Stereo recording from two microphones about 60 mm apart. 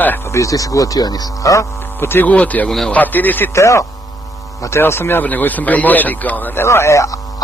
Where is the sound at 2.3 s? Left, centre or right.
Left.